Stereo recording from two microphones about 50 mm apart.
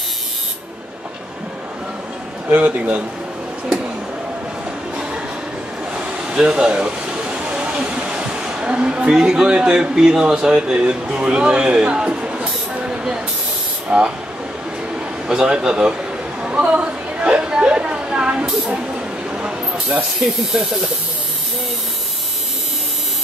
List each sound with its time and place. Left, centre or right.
2.5 s a man's voice: right
5.9 s a sound: centre
13.8 s speech: centre
15.2 s a man's voice: centre
16.4 s a sound: right
19.9 s a man's voice: centre